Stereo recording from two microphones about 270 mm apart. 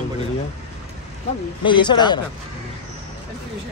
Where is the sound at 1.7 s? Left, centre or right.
Centre.